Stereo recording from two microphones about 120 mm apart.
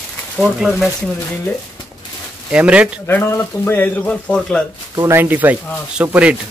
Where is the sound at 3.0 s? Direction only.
20° left (ahead or behind).